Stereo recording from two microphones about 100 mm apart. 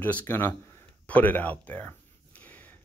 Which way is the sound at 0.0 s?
20° left (ahead or behind).